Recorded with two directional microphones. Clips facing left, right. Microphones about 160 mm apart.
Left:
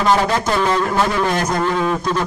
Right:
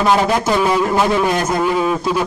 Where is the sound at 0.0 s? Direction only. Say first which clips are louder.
Right 2 dB; 10° right (ahead or behind).